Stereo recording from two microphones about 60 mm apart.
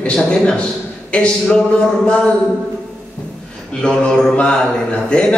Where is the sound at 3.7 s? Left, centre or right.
Centre.